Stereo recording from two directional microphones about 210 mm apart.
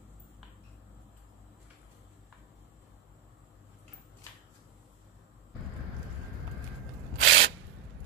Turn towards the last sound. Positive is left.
turn(degrees=-55)  # may be behind; listen again after turning